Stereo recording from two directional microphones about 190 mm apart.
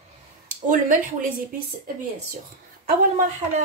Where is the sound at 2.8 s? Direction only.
40° right (ahead or behind).